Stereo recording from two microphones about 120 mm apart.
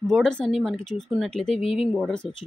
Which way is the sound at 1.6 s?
50° left (ahead or behind).